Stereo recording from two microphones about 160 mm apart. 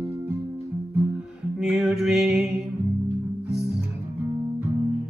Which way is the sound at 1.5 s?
5° right (ahead or behind).